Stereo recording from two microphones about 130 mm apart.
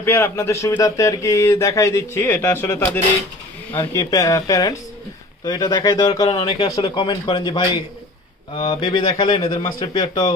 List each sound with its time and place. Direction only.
0.0 s speech: 20° left (ahead or behind); by 10.3 s 35° left (ahead or behind)